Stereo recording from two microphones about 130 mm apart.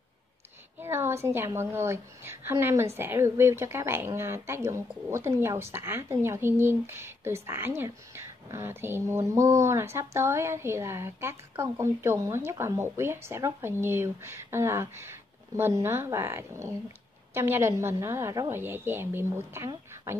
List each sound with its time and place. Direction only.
0.7 s a woman's voice: 20° right (ahead or behind)